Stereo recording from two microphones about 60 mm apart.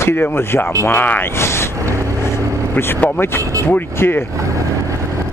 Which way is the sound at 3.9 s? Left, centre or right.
Left.